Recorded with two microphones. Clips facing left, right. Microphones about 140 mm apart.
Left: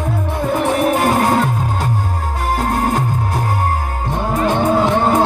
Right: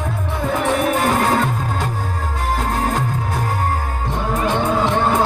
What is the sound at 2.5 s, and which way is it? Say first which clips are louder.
Music: left 3 dB; 45° left (ahead or behind).